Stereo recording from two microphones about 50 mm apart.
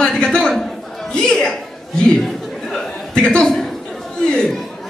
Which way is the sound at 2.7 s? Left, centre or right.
Centre.